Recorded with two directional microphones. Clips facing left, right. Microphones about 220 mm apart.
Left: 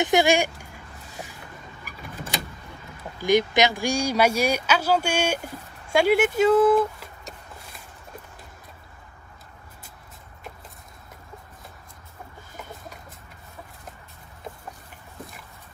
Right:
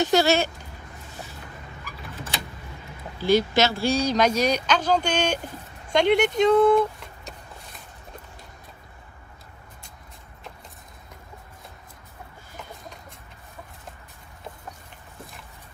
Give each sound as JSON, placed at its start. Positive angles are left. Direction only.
{"t": 0.0, "sound": "speech", "side_deg": 15}
{"t": 3.2, "sound": "speech", "side_deg": 15}